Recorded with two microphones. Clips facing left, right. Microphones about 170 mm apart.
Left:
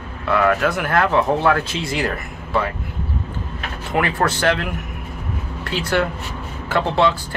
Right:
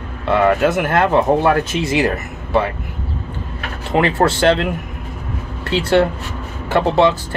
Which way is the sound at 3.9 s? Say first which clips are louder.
Right 5 dB; 25° right (ahead or behind).